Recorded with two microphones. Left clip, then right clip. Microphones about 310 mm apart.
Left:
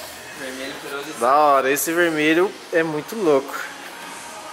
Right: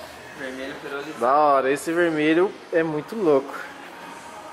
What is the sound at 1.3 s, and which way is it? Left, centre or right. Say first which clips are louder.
Speech: left 3 dB; centre.